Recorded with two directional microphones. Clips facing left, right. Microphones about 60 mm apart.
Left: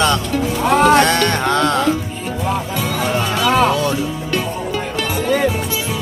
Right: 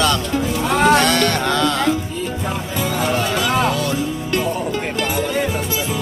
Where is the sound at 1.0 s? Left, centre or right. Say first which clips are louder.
Left 2 dB; left.